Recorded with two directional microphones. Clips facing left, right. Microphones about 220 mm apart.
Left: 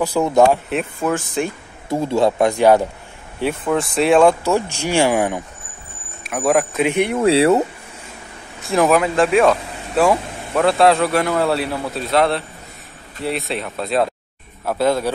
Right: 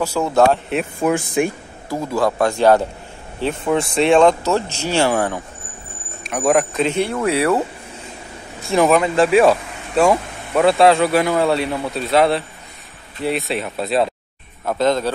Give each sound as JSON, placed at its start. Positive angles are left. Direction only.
{"t": 0.0, "sound": "speech", "side_deg": 15}
{"t": 0.4, "sound": "speech", "side_deg": 0}
{"t": 1.0, "sound": "speech", "side_deg": -15}
{"t": 1.9, "sound": "a man's voice", "side_deg": 25}
{"t": 3.7, "sound": "speech", "side_deg": 0}
{"t": 6.2, "sound": "a man's voice", "side_deg": 0}
{"t": 8.6, "sound": "speech", "side_deg": 0}